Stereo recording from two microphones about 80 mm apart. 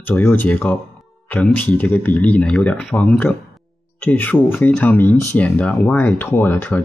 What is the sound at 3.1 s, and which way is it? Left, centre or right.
Speech, left.